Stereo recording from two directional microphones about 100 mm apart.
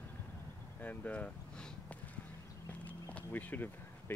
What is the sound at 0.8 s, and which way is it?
Speech, 15° left (ahead or behind).